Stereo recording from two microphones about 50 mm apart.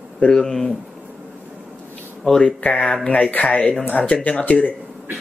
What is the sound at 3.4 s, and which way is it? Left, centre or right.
Speech, left.